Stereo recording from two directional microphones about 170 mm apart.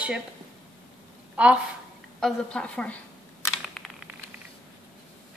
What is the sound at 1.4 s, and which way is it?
Speech, 5° right (ahead or behind).